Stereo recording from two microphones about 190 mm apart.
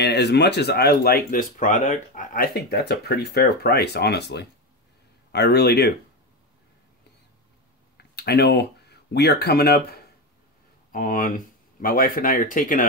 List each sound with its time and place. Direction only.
0.0 s speech: 60° left (ahead or behind)
8.0 s speech: 60° left (ahead or behind)